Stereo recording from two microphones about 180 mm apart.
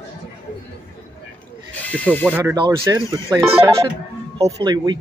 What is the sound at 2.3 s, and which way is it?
Speech, 20° right (ahead or behind).